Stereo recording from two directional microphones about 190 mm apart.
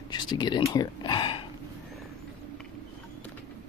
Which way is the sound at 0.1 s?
25° left (ahead or behind).